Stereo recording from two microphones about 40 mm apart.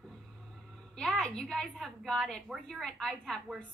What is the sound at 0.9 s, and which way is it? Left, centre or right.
A woman's voice, centre.